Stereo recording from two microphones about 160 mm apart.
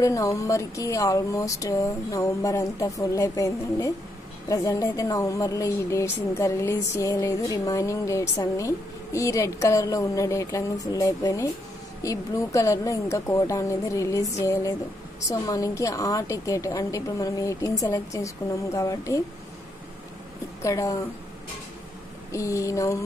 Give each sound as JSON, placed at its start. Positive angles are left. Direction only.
{"t": 0.0, "sound": "speech", "side_deg": 20}
{"t": 20.6, "sound": "speech", "side_deg": 20}
{"t": 22.3, "sound": "speech", "side_deg": 20}